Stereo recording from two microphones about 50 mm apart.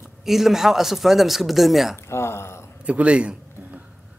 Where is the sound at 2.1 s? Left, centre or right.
Left.